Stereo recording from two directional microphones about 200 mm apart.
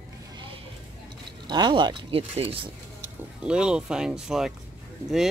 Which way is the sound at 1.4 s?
20° right (ahead or behind).